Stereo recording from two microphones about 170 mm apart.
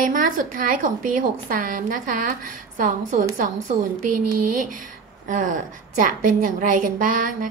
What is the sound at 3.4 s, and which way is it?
Speech, 55° right (ahead or behind).